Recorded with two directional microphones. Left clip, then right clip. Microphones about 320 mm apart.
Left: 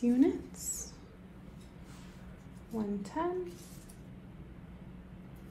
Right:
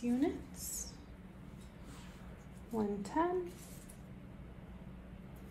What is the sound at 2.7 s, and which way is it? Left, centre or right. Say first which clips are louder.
Speech: right 1 dB; right.